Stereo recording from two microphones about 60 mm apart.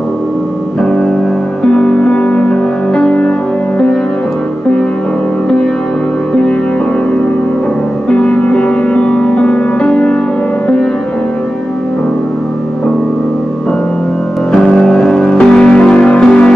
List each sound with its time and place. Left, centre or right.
0.8 s music: centre
8.1 s music: centre
14.5 s music: centre